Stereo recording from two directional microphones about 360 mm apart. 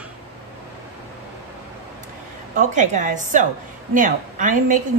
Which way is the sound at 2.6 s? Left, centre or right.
Right.